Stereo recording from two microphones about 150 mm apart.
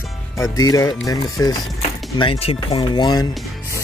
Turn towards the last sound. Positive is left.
turn(degrees=30)  # may be behind; listen again after turning